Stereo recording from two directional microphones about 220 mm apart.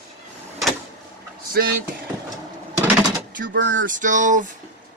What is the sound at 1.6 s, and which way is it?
Speech, 45° right (ahead or behind).